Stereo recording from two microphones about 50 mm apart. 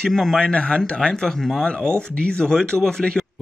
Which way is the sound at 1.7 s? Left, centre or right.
Left.